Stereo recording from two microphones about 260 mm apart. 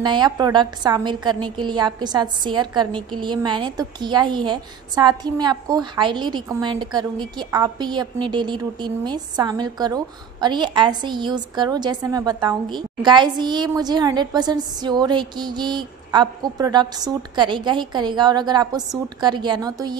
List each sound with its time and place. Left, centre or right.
0.0 s a woman's voice: centre